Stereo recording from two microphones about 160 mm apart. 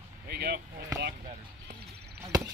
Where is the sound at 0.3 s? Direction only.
80° right.